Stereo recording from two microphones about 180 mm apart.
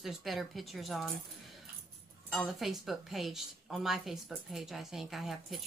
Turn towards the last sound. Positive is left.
turn(degrees=0)  # may be behind; listen again after turning